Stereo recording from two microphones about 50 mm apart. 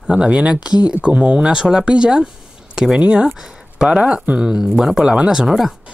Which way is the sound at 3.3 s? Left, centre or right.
Centre.